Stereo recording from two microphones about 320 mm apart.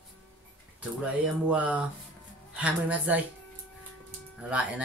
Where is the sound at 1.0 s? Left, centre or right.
Centre.